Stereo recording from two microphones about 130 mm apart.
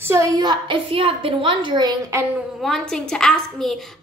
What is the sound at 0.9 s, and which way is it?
A woman's voice, 45° right (ahead or behind).